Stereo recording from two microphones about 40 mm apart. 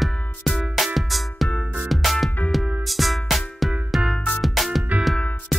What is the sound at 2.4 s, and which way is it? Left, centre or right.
Music, left.